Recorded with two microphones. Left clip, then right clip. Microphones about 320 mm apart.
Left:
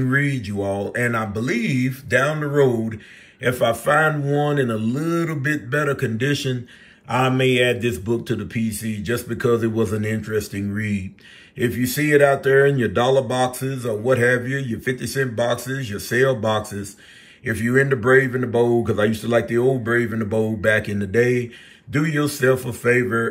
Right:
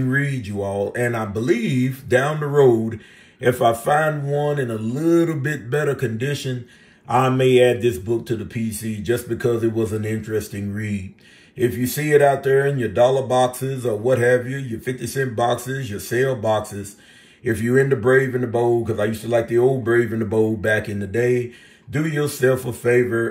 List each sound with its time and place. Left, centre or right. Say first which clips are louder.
0.0 s speech: left 2 dB; centre